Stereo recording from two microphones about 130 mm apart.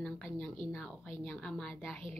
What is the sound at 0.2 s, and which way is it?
A woman's voice, 5° left (ahead or behind).